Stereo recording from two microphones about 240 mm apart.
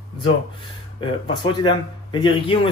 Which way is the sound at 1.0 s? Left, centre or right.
Left.